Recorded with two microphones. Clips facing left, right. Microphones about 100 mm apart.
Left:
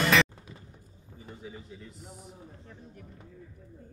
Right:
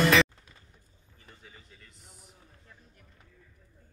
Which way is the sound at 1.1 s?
15° left (ahead or behind).